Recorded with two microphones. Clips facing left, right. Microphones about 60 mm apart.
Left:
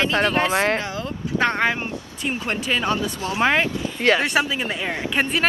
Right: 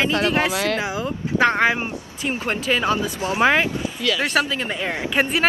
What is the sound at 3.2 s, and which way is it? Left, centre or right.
Speech, centre.